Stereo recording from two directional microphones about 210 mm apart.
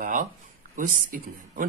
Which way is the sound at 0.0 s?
40° right (ahead or behind).